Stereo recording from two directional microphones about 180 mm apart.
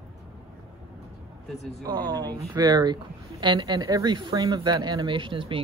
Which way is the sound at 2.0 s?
20° right (ahead or behind).